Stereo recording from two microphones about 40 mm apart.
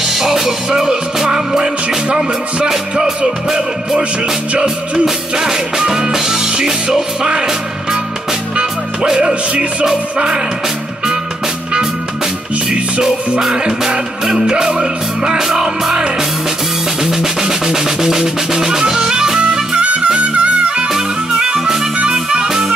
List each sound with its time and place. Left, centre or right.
0.0 s music: centre
3.4 s music: centre
5.3 s music: centre
9.0 s music: centre
13.4 s music: centre
19.8 s music: right
20.9 s music: centre